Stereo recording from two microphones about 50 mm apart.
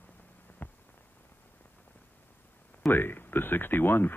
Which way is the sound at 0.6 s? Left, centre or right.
Left.